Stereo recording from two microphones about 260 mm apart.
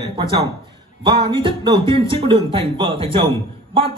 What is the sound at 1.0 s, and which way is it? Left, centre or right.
A man's voice, centre.